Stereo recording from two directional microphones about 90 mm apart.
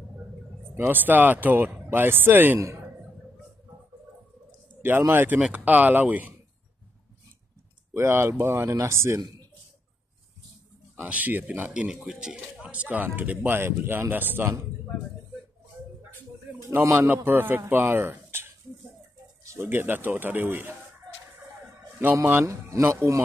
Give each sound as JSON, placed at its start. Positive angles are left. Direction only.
{"t": 0.7, "sound": "speech", "side_deg": -20}
{"t": 4.8, "sound": "speech", "side_deg": -25}
{"t": 7.9, "sound": "speech", "side_deg": -30}
{"t": 11.0, "sound": "speech", "side_deg": -20}
{"t": 16.8, "sound": "speech", "side_deg": -25}
{"t": 19.4, "sound": "bird", "side_deg": -35}
{"t": 19.7, "sound": "speech", "side_deg": -25}
{"t": 22.0, "sound": "speech", "side_deg": -25}